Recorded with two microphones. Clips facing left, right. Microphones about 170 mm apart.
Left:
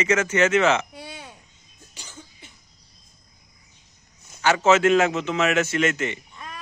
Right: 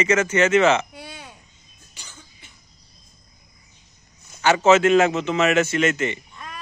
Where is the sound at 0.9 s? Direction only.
25° left (ahead or behind).